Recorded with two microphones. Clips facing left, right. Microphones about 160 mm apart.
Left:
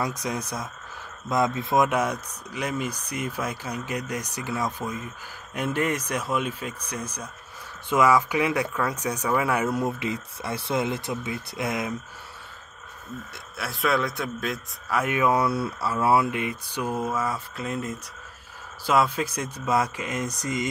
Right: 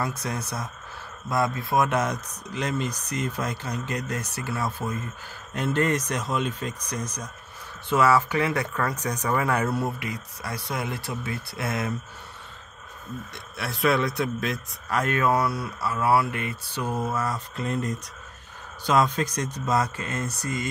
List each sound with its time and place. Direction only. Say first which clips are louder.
0.0 s a man's voice: left 1 dB; 15° left (ahead or behind)
1.9 s a man's voice: even; 10° left (ahead or behind)
13.6 s a man's voice: right 2 dB; centre (ahead or behind); by 20.6 s 15° left (ahead or behind)